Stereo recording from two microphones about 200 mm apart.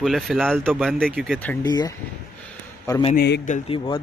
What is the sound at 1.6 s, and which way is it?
Speech, 20° left (ahead or behind).